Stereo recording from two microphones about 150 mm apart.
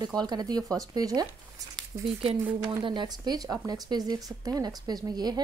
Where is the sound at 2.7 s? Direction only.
30° right (ahead or behind).